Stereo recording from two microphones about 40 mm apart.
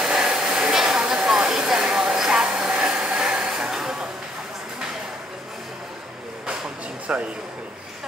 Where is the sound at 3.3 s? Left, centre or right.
Centre.